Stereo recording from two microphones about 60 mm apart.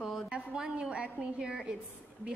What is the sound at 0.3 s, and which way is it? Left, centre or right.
A woman's voice, centre.